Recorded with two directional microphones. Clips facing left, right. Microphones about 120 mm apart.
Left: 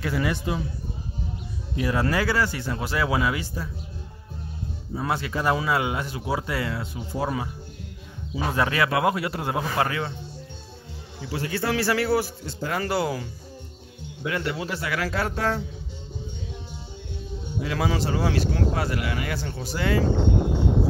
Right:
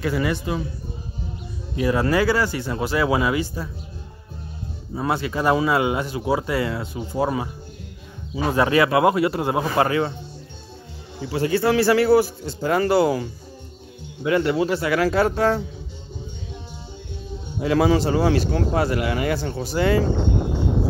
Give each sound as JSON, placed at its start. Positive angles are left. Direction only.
{"t": 0.0, "sound": "a man's voice", "side_deg": 0}
{"t": 1.8, "sound": "speech", "side_deg": -5}
{"t": 4.9, "sound": "speech", "side_deg": -10}
{"t": 8.5, "sound": "speech", "side_deg": -15}
{"t": 9.8, "sound": "a man's voice", "side_deg": -30}
{"t": 11.1, "sound": "a man's voice", "side_deg": -25}
{"t": 17.6, "sound": "speech", "side_deg": -30}